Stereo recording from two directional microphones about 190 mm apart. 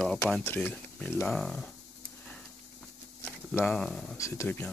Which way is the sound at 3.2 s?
5° left (ahead or behind).